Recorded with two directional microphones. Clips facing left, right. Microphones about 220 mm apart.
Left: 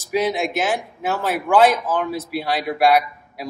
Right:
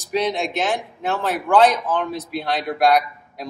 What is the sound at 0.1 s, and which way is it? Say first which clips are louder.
A man's voice: left 1 dB; 5° left (ahead or behind).